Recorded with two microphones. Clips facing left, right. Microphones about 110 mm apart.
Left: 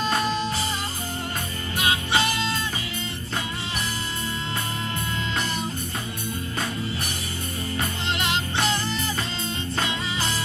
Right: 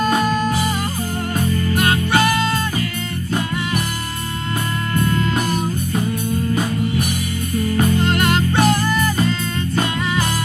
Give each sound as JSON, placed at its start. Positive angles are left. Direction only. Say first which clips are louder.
{"t": 0.0, "sound": "music", "louder": "right 7 dB", "side_deg": -50}
{"t": 1.8, "sound": "music", "louder": "right 5 dB", "side_deg": -55}
{"t": 4.9, "sound": "music", "louder": "right 13 dB", "side_deg": -50}
{"t": 8.0, "sound": "music", "louder": "right 9 dB", "side_deg": -50}